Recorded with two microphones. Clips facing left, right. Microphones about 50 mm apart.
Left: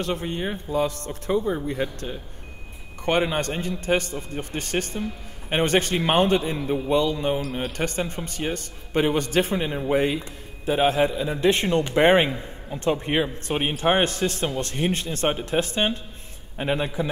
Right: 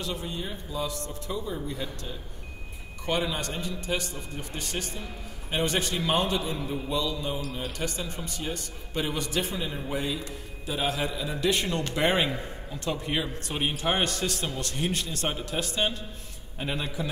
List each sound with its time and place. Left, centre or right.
0.0 s a man's voice: left